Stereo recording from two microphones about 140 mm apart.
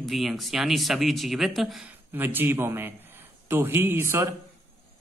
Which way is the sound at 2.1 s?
15° right (ahead or behind).